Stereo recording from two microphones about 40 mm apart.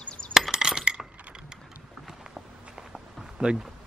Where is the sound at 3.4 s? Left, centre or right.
Right.